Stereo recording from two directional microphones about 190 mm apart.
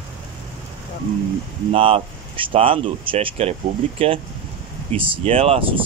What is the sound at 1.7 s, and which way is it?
Speech, 30° right (ahead or behind).